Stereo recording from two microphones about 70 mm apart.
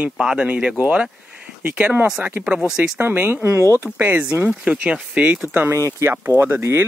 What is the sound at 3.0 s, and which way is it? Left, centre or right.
Speech, right.